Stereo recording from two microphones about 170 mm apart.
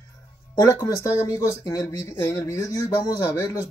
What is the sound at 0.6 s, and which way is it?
Speech, 15° left (ahead or behind).